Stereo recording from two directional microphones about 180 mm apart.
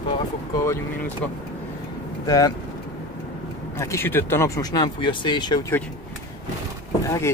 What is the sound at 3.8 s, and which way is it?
Speech, 15° left (ahead or behind).